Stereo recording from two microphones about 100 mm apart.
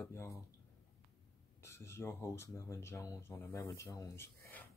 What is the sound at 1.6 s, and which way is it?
Speech, 25° left (ahead or behind).